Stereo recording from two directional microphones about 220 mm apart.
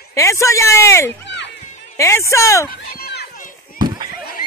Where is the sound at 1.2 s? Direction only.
50° left (ahead or behind).